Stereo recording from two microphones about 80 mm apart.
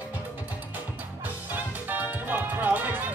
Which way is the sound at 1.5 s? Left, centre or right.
Right.